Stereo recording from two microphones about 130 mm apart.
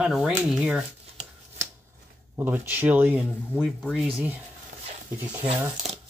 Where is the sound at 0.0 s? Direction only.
5° right (ahead or behind).